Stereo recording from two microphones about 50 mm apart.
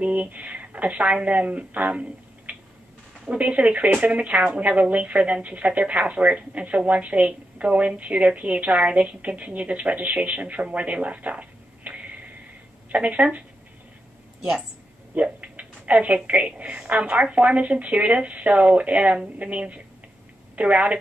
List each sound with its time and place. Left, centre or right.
0.0 s a woman's voice: right
15.4 s a sound: right
16.3 s a woman's voice: right